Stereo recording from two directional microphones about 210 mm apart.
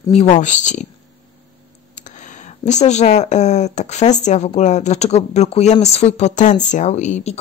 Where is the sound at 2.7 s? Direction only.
35° left (ahead or behind).